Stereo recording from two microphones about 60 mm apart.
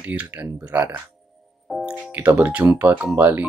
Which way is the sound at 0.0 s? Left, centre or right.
Right.